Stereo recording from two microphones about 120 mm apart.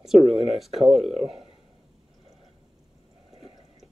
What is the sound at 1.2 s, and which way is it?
Speech, 50° right (ahead or behind).